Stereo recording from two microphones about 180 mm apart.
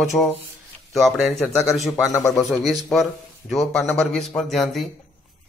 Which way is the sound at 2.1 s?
15° left (ahead or behind).